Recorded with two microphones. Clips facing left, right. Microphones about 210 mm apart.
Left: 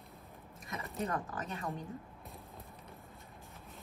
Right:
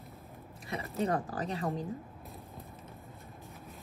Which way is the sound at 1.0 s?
35° right (ahead or behind).